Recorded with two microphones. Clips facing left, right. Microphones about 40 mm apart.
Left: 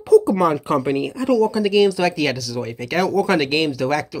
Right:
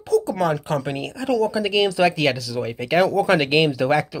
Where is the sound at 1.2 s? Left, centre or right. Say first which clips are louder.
Left 2 dB; centre.